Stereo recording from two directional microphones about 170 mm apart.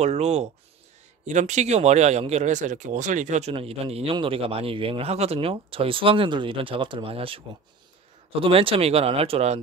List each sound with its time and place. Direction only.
0.0 s speech: 40° right (ahead or behind)